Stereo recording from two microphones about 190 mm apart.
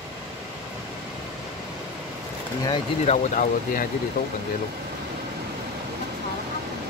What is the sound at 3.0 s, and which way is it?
Speech, 40° left (ahead or behind).